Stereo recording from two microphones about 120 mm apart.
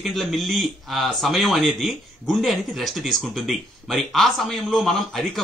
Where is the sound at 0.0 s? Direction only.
Centre (ahead or behind).